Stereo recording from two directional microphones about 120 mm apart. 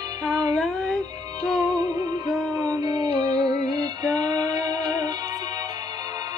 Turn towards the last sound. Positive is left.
turn(degrees=-35)  # may be behind; listen again after turning